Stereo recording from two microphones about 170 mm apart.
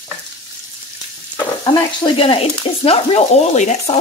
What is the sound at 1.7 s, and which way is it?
Frying, 30° left (ahead or behind).